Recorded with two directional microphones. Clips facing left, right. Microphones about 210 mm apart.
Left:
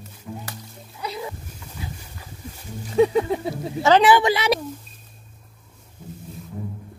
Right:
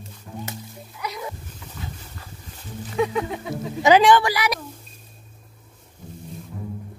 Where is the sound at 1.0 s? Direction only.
30° left (ahead or behind).